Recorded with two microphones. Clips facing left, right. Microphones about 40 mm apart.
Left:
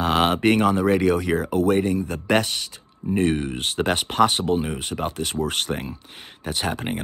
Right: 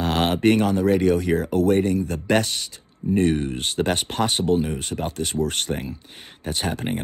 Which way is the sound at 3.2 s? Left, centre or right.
Left.